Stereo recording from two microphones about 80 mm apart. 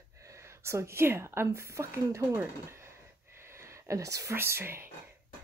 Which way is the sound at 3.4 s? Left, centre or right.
Right.